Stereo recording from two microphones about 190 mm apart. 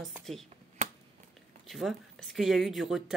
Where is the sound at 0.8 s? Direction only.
35° right (ahead or behind).